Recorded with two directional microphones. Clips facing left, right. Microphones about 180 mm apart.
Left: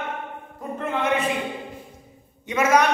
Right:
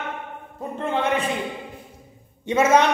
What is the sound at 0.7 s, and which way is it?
Speech, 30° right (ahead or behind).